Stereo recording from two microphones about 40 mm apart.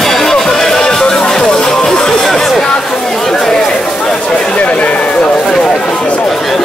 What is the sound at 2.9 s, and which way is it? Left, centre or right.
Chatter, centre.